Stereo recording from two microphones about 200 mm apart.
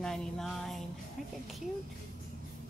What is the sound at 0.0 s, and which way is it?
Music, centre (ahead or behind).